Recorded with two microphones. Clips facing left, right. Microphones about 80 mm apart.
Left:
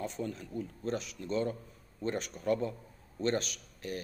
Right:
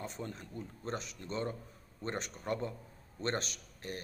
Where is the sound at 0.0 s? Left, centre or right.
Right.